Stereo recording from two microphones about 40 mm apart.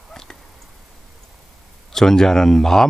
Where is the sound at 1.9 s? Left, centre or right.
Centre.